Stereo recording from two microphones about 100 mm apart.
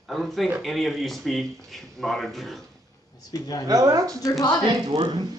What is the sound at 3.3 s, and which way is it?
Speech, 40° left (ahead or behind).